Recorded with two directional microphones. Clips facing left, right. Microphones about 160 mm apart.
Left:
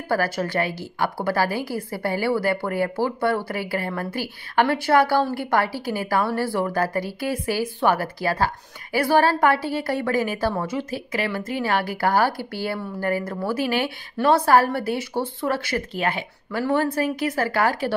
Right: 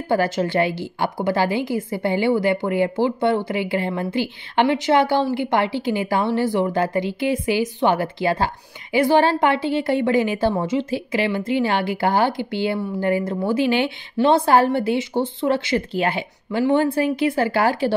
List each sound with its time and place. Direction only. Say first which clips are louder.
0.1 s a woman's voice: right 4 dB; 25° right (ahead or behind)